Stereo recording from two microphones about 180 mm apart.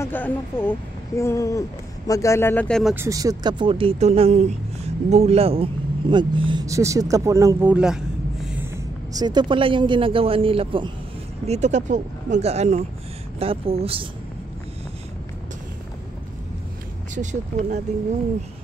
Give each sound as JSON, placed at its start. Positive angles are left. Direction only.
{"t": 0.0, "sound": "speech", "side_deg": 10}
{"t": 2.8, "sound": "speech", "side_deg": -5}
{"t": 3.1, "sound": "speech", "side_deg": -20}
{"t": 8.7, "sound": "speech", "side_deg": -20}
{"t": 17.1, "sound": "speech", "side_deg": -45}